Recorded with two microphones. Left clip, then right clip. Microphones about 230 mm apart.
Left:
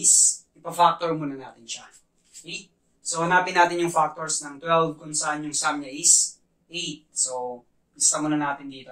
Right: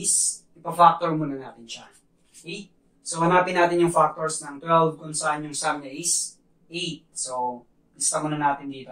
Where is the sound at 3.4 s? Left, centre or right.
Left.